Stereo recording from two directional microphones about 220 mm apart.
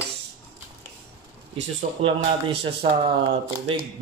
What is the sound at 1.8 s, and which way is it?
Speech, 25° right (ahead or behind).